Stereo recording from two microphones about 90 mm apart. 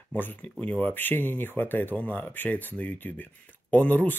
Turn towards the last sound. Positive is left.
turn(degrees=20)  # may be behind; listen again after turning